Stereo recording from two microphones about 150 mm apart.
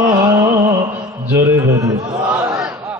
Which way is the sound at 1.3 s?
25° right (ahead or behind).